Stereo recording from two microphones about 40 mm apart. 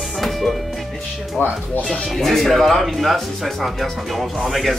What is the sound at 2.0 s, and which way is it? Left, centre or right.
Speech, centre.